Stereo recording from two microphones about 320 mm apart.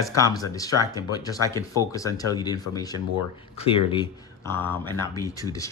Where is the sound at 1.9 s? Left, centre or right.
Centre.